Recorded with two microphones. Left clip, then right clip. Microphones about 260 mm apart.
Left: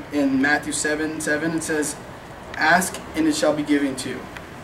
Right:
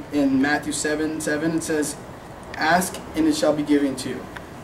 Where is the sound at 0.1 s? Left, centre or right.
Centre.